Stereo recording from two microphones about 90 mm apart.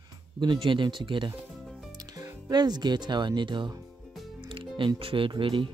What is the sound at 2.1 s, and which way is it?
Speech, 45° right (ahead or behind).